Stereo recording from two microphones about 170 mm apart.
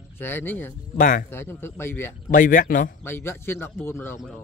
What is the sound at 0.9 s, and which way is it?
Speech, 50° left (ahead or behind).